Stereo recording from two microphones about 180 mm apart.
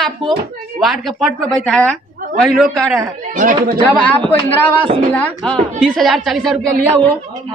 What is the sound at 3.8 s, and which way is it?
Speech, 10° left (ahead or behind).